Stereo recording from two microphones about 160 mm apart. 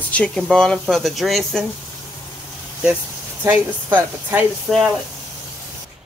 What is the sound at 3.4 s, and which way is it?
Speech, 10° right (ahead or behind).